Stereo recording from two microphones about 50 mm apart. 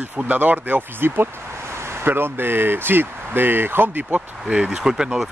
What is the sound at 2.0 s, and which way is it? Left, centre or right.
Speech, right.